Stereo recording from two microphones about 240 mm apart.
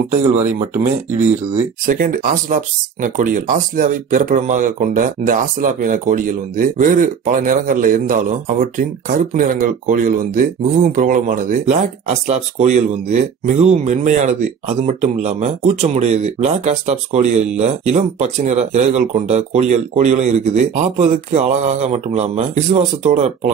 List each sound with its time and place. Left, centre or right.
0.1 s speech: right
1.9 s speech: right